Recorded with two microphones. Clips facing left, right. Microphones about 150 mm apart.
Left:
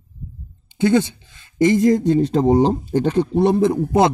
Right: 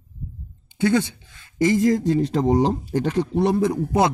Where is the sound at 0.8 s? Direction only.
25° left (ahead or behind).